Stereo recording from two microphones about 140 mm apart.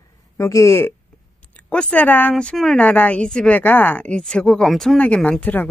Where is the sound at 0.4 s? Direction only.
20° left (ahead or behind).